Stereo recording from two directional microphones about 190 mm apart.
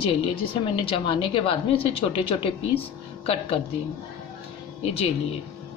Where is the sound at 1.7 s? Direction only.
30° left (ahead or behind).